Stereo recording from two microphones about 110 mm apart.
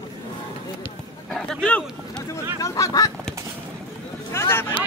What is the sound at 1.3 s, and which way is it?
Speech, 5° left (ahead or behind).